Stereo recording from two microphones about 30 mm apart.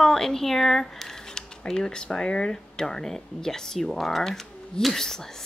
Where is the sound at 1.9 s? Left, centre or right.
Left.